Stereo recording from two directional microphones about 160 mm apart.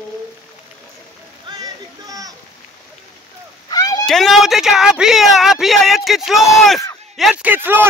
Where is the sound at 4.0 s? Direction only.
Centre (ahead or behind).